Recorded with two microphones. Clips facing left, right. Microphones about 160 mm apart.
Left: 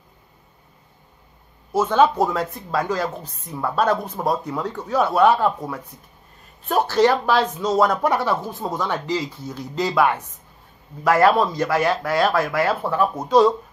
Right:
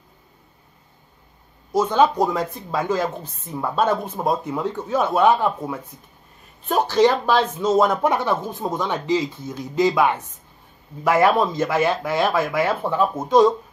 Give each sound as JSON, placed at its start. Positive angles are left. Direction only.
{"t": 1.8, "sound": "speech", "side_deg": -15}
{"t": 6.7, "sound": "speech", "side_deg": -20}